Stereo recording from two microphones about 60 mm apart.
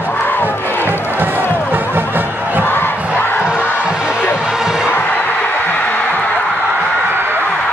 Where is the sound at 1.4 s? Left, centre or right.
Left.